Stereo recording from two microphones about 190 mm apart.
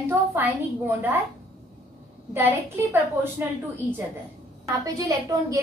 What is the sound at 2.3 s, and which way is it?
Speech, 15° right (ahead or behind).